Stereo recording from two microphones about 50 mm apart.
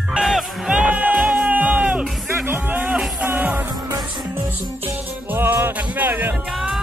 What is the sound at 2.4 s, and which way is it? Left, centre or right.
Music, right.